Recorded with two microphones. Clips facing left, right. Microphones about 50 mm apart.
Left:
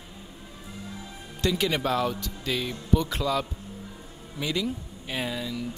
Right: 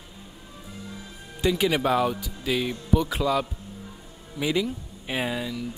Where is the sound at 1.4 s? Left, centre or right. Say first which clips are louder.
Right 3 dB; centre.